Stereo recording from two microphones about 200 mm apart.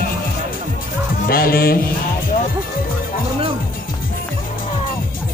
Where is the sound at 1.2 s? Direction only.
45° left (ahead or behind).